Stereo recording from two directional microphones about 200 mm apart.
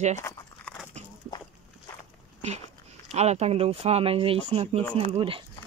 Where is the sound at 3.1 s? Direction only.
35° right (ahead or behind).